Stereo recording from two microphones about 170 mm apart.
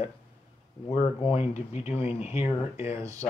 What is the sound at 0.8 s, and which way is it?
Speech, 30° left (ahead or behind).